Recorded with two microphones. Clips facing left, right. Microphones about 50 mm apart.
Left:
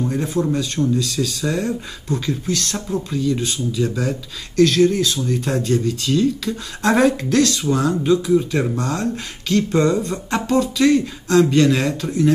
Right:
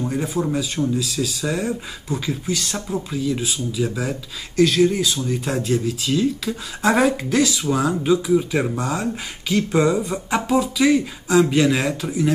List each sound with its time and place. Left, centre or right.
0.0 s speech: centre